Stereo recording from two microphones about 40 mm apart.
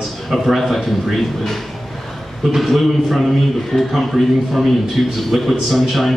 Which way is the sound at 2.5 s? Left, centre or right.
Centre.